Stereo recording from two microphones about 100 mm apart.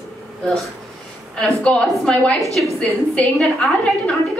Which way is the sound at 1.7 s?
15° left (ahead or behind).